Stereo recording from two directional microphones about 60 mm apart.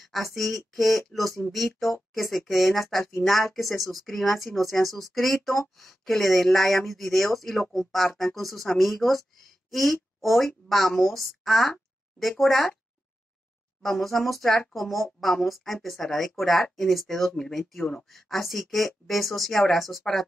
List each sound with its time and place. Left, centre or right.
0.3 s speech: centre
13.8 s speech: centre